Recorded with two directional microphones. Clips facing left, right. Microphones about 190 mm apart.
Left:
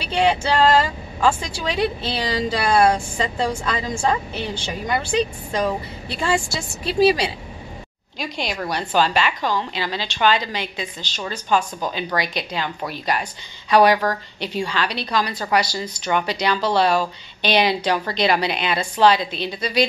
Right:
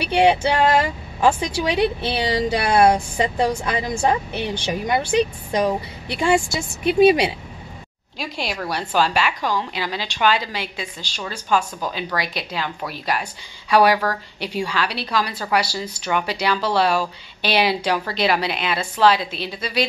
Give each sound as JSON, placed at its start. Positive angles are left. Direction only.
{"t": 0.0, "sound": "a woman's voice", "side_deg": -15}
{"t": 8.2, "sound": "a woman's voice", "side_deg": -5}